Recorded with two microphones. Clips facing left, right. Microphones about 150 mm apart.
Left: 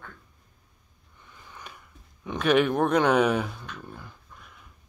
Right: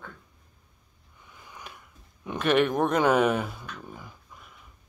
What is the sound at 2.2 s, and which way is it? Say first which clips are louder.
Speech: left 1 dB; centre (ahead or behind).